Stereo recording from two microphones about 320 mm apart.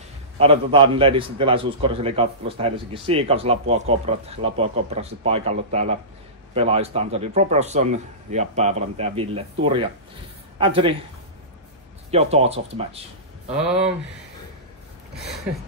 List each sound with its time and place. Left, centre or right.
0.4 s a man's voice: centre
12.1 s speech: centre